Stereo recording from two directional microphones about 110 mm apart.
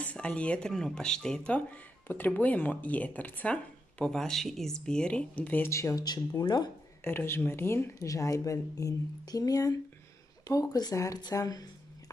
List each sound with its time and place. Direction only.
0.0 s speech: 10° left (ahead or behind)
4.0 s speech: 5° left (ahead or behind); by 6.7 s 40° left (ahead or behind)
7.1 s speech: 20° left (ahead or behind)